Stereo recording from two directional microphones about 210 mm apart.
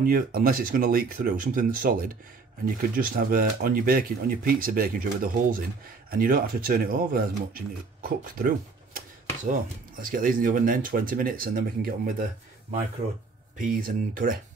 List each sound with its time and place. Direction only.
0.0 s speech: 45° right (ahead or behind)
13.6 s speech: 40° right (ahead or behind)